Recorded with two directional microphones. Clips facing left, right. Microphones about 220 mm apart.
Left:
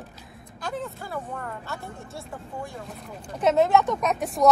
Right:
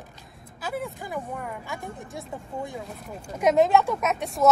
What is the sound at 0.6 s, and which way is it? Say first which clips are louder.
Speech: right 1 dB; 10° right (ahead or behind).